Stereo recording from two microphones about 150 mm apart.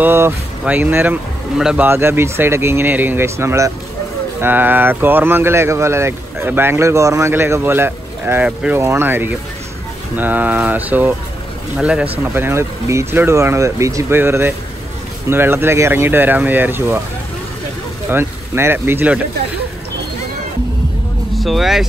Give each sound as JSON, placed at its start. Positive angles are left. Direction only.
{"t": 0.0, "sound": "speech", "side_deg": -15}
{"t": 18.1, "sound": "speech", "side_deg": -15}
{"t": 21.4, "sound": "speech", "side_deg": 0}